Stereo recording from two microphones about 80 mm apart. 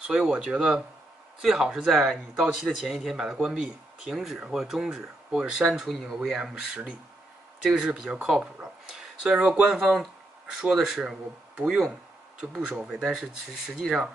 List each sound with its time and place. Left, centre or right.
0.0 s speech: centre